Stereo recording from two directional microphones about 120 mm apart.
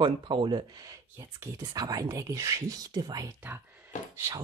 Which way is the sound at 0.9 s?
20° right (ahead or behind).